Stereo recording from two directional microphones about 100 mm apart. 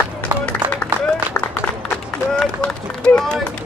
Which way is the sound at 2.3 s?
10° left (ahead or behind).